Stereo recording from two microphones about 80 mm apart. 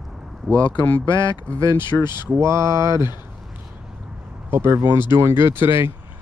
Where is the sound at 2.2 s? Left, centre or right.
Right.